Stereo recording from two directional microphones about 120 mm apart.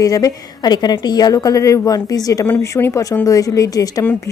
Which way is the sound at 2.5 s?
20° left (ahead or behind).